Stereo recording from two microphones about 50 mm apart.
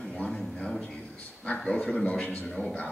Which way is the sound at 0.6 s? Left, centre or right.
Centre.